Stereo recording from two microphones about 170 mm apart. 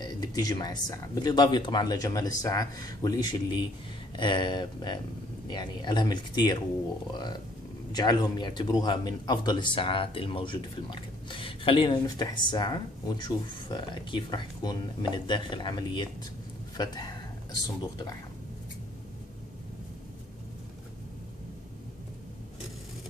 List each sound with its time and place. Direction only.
0.0 s speech: 25° left (ahead or behind)
7.9 s speech: 25° left (ahead or behind)